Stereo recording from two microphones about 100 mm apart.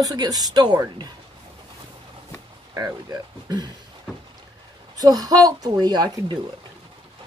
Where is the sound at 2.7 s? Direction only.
35° right (ahead or behind).